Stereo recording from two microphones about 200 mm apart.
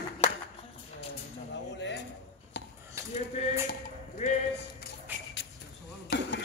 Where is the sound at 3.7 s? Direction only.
35° left (ahead or behind).